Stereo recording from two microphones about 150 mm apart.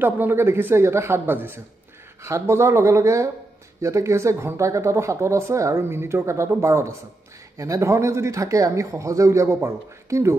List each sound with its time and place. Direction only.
0.0 s a man's voice: 15° right (ahead or behind)